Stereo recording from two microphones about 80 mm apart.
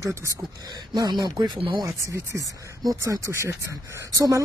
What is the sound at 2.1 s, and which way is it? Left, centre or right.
Speech, right.